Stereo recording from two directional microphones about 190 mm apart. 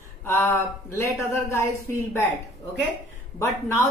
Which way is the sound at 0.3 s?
15° left (ahead or behind).